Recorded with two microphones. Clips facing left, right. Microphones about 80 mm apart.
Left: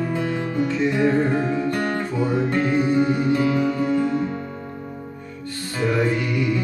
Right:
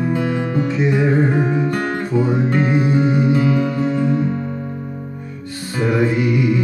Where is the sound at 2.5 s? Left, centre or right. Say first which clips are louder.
Right 1 dB; centre.